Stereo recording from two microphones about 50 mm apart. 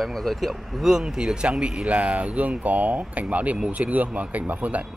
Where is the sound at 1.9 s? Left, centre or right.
Right.